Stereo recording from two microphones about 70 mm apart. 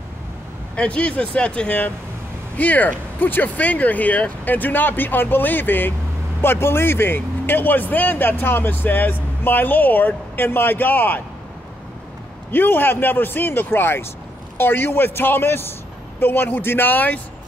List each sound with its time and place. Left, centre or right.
0.7 s speech: centre
12.4 s a man's voice: left